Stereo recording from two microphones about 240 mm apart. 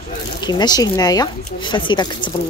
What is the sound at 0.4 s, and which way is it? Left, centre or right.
Speech, centre.